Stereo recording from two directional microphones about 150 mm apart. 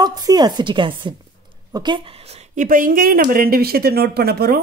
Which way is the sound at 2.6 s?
65° right (ahead or behind).